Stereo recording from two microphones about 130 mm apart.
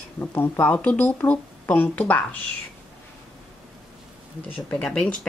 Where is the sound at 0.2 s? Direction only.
15° left (ahead or behind).